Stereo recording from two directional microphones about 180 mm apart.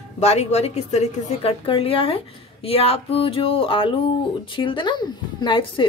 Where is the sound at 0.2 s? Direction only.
35° left (ahead or behind).